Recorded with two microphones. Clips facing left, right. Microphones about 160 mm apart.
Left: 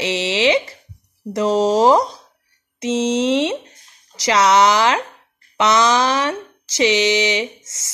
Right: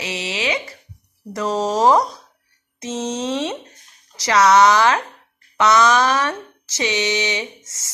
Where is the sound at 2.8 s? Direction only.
80° left.